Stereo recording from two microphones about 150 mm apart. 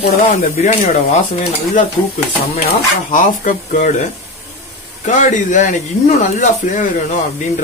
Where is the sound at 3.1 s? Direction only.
60° left (ahead or behind).